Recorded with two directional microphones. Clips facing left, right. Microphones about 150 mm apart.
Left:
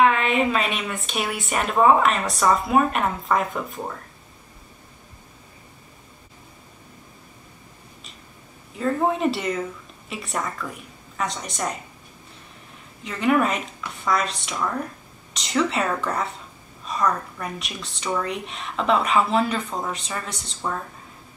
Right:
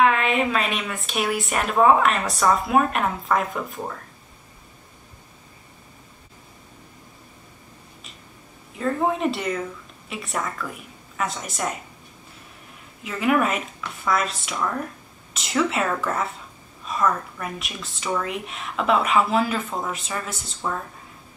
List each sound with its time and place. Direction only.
0.0 s a woman's voice: centre (ahead or behind)
8.7 s a woman's voice: centre (ahead or behind)
13.0 s a woman's voice: 5° right (ahead or behind)